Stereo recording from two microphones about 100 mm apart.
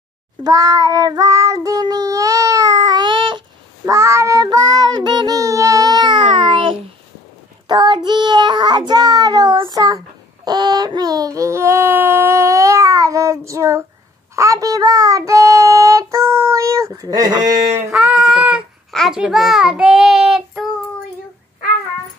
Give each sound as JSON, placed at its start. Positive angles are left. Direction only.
{"t": 0.4, "sound": "child singing", "side_deg": -35}
{"t": 3.8, "sound": "child singing", "side_deg": -30}
{"t": 18.9, "sound": "babbling", "side_deg": 0}
{"t": 19.1, "sound": "child singing", "side_deg": -5}